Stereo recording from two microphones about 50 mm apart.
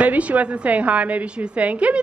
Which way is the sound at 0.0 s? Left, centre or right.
Right.